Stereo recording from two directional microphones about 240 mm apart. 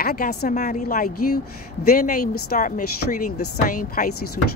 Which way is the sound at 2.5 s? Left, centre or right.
Left.